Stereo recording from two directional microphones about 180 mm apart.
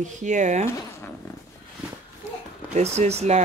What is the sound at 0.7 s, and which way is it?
Speech, 15° left (ahead or behind).